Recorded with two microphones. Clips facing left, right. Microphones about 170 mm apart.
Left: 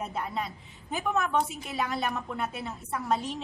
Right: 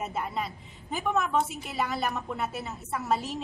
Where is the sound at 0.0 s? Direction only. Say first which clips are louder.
Right 1 dB; 5° right (ahead or behind).